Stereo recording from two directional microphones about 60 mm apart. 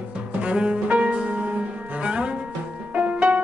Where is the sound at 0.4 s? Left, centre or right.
Centre.